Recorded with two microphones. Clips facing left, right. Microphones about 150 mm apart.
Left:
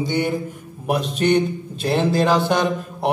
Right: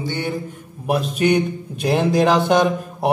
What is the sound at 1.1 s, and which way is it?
A man's voice, 10° right (ahead or behind).